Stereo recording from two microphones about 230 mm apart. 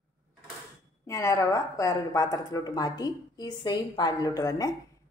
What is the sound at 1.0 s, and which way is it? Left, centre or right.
A woman's voice, centre.